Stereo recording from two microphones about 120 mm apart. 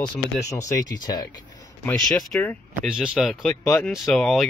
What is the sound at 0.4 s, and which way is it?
Speech, 25° left (ahead or behind).